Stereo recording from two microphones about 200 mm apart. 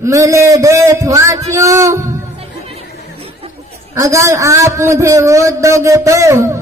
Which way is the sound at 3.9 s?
15° right (ahead or behind).